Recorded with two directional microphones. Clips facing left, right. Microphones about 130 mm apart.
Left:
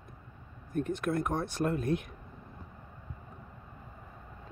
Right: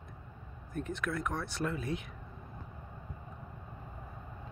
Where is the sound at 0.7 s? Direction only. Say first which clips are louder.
Left 5 dB; 50° left (ahead or behind).